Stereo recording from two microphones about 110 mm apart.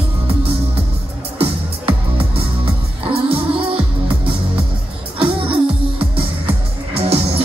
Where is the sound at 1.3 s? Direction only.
60° right (ahead or behind).